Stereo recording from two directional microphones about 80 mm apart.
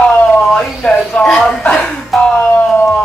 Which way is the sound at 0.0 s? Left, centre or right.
Centre.